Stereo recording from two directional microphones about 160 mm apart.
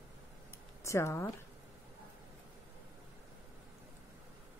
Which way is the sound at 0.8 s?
20° left (ahead or behind).